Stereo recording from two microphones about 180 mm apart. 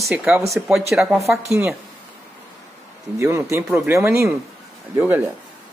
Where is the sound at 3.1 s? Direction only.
15° right (ahead or behind).